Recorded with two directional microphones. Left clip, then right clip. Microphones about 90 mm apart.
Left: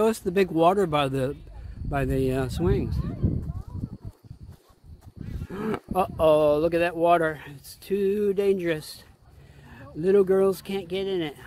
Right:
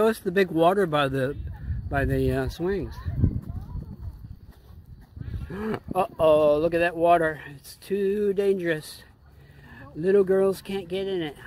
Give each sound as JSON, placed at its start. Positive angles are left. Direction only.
{"t": 0.0, "sound": "speech", "side_deg": 20}
{"t": 2.5, "sound": "speech", "side_deg": 25}
{"t": 5.7, "sound": "speech", "side_deg": 30}